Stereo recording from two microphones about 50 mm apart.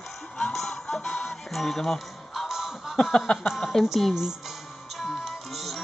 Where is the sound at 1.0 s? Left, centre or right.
Left.